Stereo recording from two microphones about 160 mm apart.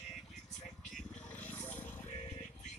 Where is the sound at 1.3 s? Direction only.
10° left (ahead or behind).